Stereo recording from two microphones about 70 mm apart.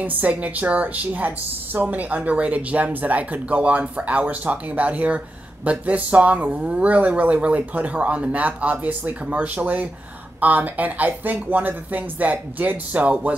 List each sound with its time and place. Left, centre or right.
0.0 s a woman's voice: right